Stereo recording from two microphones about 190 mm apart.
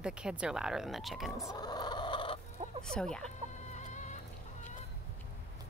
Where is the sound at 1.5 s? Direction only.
20° left (ahead or behind).